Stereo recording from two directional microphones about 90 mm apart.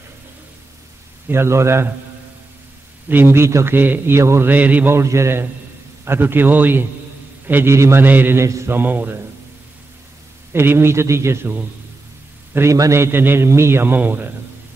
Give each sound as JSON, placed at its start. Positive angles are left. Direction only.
{"t": 1.3, "sound": "a man's voice", "side_deg": -30}
{"t": 3.1, "sound": "a man's voice", "side_deg": -25}
{"t": 4.9, "sound": "a man's voice", "side_deg": -30}
{"t": 8.5, "sound": "a man's voice", "side_deg": -35}
{"t": 8.7, "sound": "a man's voice", "side_deg": -20}
{"t": 10.5, "sound": "a man's voice", "side_deg": -25}